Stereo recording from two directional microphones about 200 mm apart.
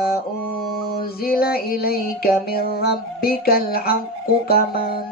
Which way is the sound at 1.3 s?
50° left (ahead or behind).